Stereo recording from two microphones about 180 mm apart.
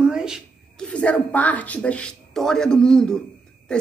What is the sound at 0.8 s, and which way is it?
A man's voice, 5° left (ahead or behind).